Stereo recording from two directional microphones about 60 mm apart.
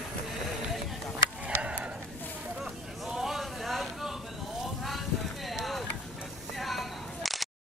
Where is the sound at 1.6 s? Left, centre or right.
Centre.